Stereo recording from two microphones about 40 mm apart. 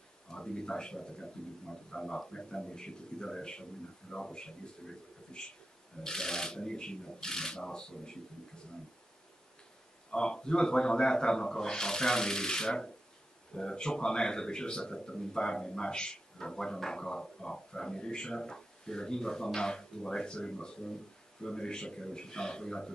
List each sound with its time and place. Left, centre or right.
0.3 s speech: centre
10.1 s speech: centre